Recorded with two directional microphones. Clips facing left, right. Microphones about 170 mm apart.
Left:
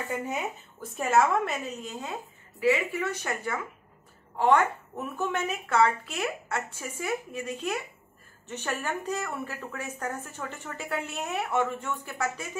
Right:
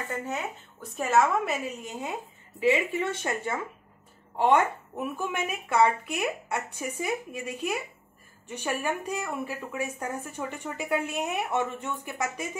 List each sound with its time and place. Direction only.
0.1 s speech: 10° left (ahead or behind)
0.9 s a woman's voice: centre (ahead or behind); by 12.4 s 15° right (ahead or behind)